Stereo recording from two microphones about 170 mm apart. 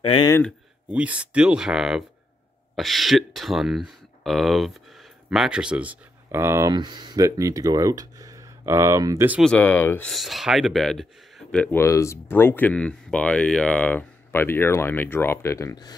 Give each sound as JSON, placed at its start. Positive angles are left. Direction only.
{"t": 0.0, "sound": "speech", "side_deg": 30}
{"t": 0.8, "sound": "speech", "side_deg": -5}
{"t": 9.4, "sound": "speech", "side_deg": 5}